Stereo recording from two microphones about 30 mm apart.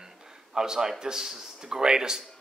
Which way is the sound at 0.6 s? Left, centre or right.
Centre.